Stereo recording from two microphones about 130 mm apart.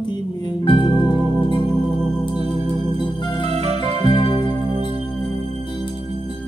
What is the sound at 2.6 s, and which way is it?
Organ, 40° left (ahead or behind).